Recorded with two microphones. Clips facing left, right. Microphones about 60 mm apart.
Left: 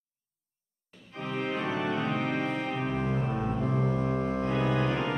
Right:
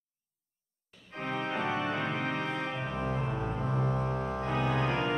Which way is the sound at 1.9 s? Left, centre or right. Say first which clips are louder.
Left 3 dB; right.